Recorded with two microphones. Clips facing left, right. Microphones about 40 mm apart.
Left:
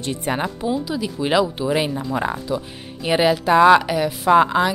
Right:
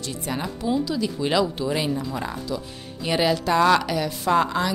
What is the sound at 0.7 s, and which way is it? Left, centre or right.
Speech, centre.